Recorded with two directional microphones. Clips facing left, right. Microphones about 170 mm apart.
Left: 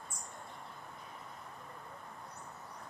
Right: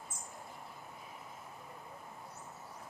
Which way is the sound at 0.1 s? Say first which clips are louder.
Even; 5° right (ahead or behind).